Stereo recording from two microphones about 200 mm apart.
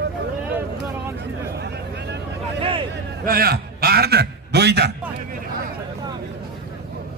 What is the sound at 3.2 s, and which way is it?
A man's voice, 50° right (ahead or behind).